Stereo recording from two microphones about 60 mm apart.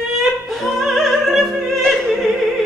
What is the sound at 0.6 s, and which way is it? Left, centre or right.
Opera, centre.